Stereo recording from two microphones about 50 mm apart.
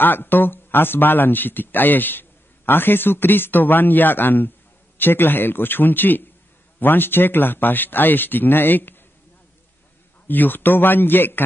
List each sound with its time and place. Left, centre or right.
0.0 s speech: left
10.2 s speech: left